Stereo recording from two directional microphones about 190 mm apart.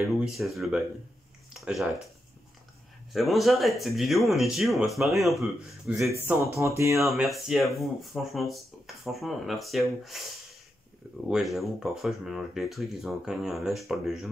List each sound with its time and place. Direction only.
0.2 s speech: centre (ahead or behind)
3.1 s speech: centre (ahead or behind)
6.2 s speech: 15° right (ahead or behind)
7.0 s speech: centre (ahead or behind)
11.2 s speech: centre (ahead or behind)